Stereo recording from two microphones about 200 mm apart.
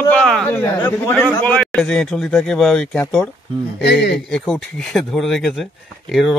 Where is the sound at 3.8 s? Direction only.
55° left (ahead or behind).